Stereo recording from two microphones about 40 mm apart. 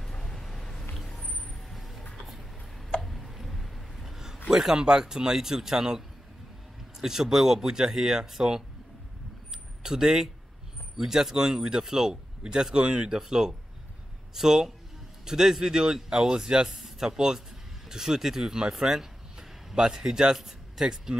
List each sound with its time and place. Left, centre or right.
0.1 s vehicle: centre
1.7 s vehicle: centre
2.9 s a sound: centre
4.5 s speech: centre
9.8 s speech: centre